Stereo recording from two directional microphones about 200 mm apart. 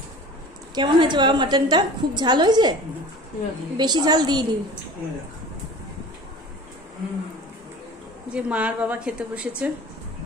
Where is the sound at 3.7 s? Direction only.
20° right (ahead or behind).